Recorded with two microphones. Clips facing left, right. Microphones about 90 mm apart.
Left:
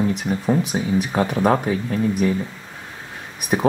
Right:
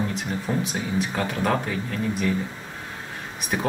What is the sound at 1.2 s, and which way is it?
Speech, 15° left (ahead or behind).